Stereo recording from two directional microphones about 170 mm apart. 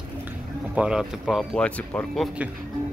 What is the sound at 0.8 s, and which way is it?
Speech, 5° right (ahead or behind).